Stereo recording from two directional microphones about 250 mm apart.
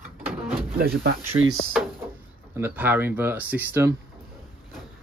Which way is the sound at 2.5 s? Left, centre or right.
Centre.